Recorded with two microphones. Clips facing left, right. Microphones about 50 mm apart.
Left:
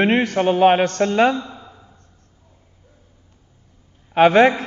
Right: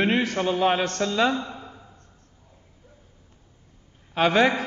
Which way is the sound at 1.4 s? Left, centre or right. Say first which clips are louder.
Left 2 dB; right.